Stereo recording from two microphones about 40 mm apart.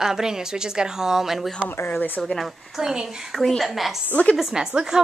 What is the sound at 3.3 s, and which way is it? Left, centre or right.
Speech, centre.